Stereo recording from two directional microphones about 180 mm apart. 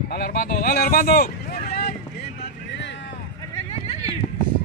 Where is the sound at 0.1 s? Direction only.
60° left (ahead or behind).